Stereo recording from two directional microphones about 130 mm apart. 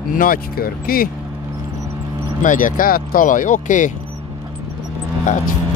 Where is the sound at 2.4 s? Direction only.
90° left.